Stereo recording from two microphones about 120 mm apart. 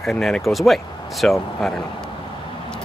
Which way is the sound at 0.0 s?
5° left (ahead or behind).